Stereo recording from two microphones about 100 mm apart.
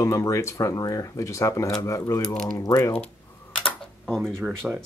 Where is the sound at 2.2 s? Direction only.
5° left (ahead or behind).